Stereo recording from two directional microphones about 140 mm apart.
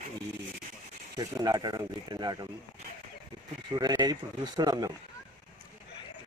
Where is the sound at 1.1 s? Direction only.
30° right (ahead or behind).